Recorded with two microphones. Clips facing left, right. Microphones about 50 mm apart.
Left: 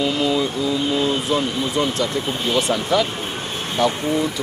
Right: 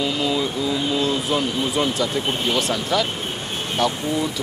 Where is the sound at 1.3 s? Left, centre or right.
Centre.